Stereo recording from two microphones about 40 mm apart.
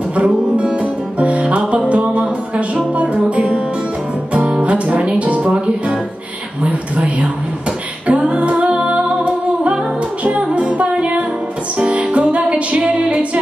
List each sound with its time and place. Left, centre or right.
0.1 s music: right
4.5 s music: right
6.6 s a sound: right
8.1 s music: right